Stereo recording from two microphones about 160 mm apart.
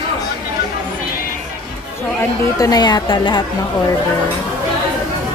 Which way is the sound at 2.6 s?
25° left (ahead or behind).